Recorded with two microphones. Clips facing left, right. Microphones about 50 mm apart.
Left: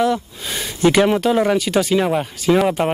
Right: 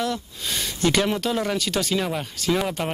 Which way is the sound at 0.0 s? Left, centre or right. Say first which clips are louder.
Left 8 dB; centre.